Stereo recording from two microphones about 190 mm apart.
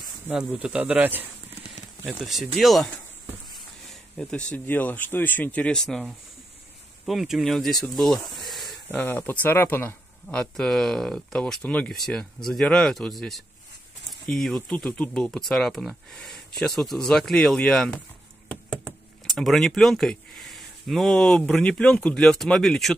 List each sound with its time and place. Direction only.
0.3 s speech: 5° right (ahead or behind)
8.3 s a sound: centre (ahead or behind)
8.8 s speech: 10° left (ahead or behind)